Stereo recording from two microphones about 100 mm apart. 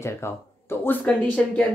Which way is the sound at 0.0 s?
25° left (ahead or behind).